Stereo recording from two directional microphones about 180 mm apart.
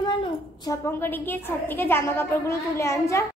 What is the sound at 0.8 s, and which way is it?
A child's voice, 10° left (ahead or behind).